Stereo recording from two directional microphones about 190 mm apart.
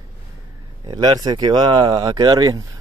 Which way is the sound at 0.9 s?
20° right (ahead or behind).